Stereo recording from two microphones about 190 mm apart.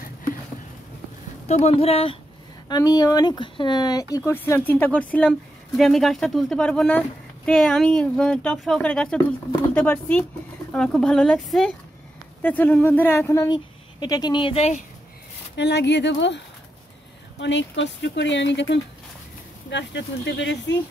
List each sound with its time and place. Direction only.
1.5 s speech: 35° left (ahead or behind)
2.7 s speech: 20° left (ahead or behind)
15.5 s speech: 65° left (ahead or behind)